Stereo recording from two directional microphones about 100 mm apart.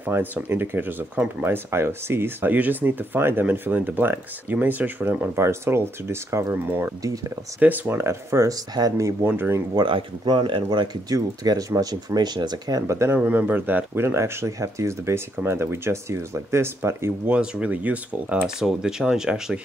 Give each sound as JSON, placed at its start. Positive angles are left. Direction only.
{"t": 0.0, "sound": "speech", "side_deg": -20}
{"t": 9.3, "sound": "speech", "side_deg": -20}
{"t": 9.8, "sound": "speech", "side_deg": -50}
{"t": 13.1, "sound": "speech", "side_deg": -15}
{"t": 17.3, "sound": "speech", "side_deg": -10}